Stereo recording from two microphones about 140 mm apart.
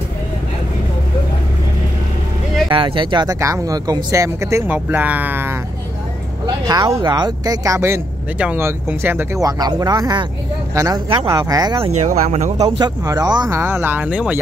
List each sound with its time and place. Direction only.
2.7 s speech: 35° right (ahead or behind)
3.3 s speech: 20° right (ahead or behind)
6.4 s speech: 30° right (ahead or behind)
11.8 s speech: 55° right (ahead or behind)
12.5 s speech: 30° right (ahead or behind)
13.6 s speech: 15° right (ahead or behind)